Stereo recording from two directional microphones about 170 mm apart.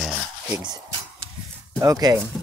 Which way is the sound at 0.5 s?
25° right (ahead or behind).